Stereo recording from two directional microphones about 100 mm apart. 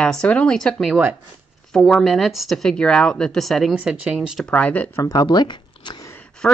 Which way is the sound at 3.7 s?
10° right (ahead or behind).